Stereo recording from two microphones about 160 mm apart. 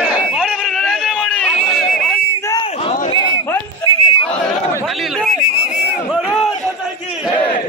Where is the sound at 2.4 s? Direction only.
20° left (ahead or behind).